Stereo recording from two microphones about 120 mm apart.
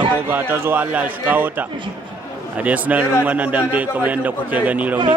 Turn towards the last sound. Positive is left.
turn(degrees=-10)  # may be behind; listen again after turning